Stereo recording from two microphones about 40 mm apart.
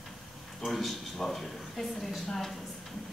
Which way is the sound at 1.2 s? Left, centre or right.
Centre.